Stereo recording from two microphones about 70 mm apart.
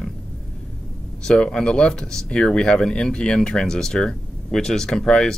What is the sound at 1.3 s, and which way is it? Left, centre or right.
Speech, centre.